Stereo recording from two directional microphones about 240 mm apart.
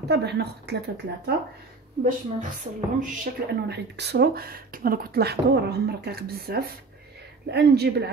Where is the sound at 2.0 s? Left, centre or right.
Right.